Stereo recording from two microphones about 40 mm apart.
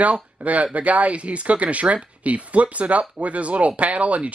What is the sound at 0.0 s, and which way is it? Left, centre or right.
Speech, right.